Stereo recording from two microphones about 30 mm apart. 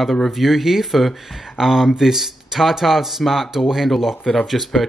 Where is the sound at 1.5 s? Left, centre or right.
Centre.